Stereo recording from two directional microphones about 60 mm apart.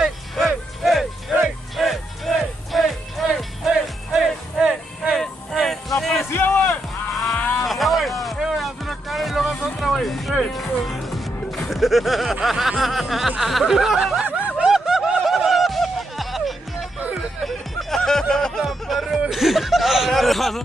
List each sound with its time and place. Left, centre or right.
0.0 s a sound: centre
1.8 s music: centre
5.2 s music: centre
6.2 s a sound: left
6.5 s music: left
7.1 s cattle: centre
7.6 s a sound: centre
9.8 s music: centre
13.4 s a sound: centre
14.6 s snicker: centre
17.5 s music: centre
18.6 s chuckle: centre